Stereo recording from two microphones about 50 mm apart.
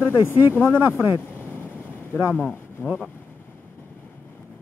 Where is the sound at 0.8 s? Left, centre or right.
Right.